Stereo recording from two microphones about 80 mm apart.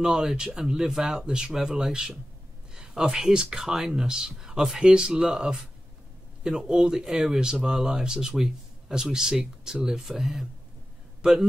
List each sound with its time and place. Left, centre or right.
0.0 s speech: centre